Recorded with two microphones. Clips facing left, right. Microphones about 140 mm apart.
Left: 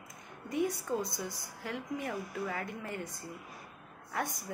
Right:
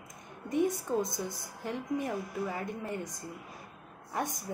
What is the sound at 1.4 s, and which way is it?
A woman's voice, 20° right (ahead or behind).